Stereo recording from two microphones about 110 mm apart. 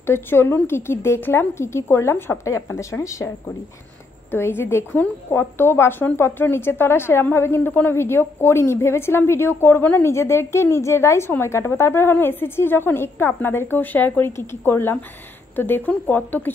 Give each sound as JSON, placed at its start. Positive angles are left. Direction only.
{"t": 0.0, "sound": "speech", "side_deg": 20}
{"t": 4.3, "sound": "speech", "side_deg": 20}